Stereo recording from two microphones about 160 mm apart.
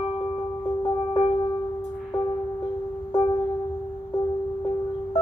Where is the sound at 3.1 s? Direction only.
30° left (ahead or behind).